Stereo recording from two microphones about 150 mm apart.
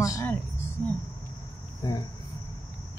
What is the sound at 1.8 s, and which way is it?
Speech, 25° left (ahead or behind).